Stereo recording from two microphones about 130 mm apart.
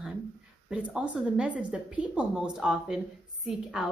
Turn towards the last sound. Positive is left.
turn(degrees=-5)  # may be behind; listen again after turning